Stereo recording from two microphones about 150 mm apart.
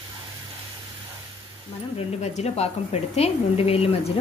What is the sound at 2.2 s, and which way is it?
A woman's voice, 45° left (ahead or behind).